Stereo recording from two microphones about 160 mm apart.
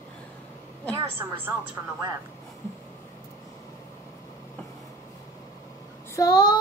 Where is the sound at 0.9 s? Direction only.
15° right (ahead or behind).